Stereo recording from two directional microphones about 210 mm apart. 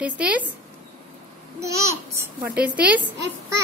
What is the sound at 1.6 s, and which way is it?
A child's voice, 15° right (ahead or behind).